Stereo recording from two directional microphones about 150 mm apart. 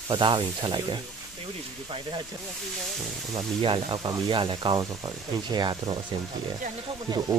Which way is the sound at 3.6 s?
35° right (ahead or behind).